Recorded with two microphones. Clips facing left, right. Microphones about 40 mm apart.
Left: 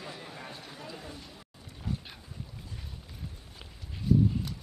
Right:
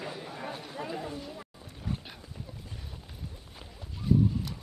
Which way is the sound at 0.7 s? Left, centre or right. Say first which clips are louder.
Right 7 dB; right.